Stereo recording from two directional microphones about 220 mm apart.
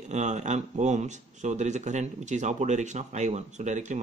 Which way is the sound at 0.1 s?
30° right (ahead or behind).